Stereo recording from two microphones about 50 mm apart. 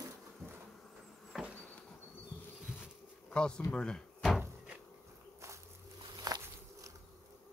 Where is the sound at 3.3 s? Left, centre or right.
Centre.